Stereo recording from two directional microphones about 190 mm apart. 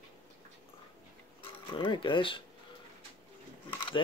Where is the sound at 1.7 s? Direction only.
25° left (ahead or behind).